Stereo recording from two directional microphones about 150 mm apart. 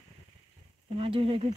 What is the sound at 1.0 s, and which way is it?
Speech, 40° right (ahead or behind).